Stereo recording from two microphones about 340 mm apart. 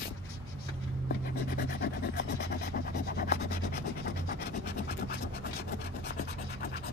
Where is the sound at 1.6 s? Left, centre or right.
Left.